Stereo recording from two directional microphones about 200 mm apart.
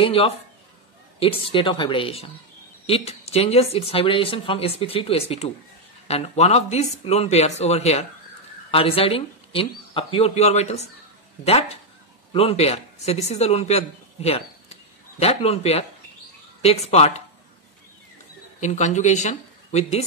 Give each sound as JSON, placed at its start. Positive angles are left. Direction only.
{"t": 0.0, "sound": "speech", "side_deg": 30}
{"t": 12.3, "sound": "speech", "side_deg": 30}
{"t": 18.6, "sound": "speech", "side_deg": 35}